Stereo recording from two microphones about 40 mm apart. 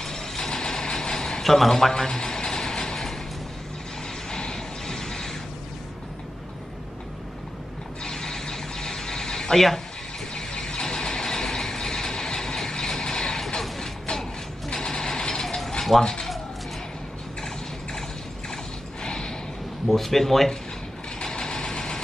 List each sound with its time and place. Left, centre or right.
0.0 s vehicle: centre
1.4 s vehicle: centre
4.3 s vehicle: centre
8.0 s a sound: centre
10.3 s vehicle: left
14.7 s mechanisms: centre
15.4 s mechanisms: centre
16.0 s speech: centre
19.0 s a sound: left
19.9 s speech: centre
21.2 s vehicle: left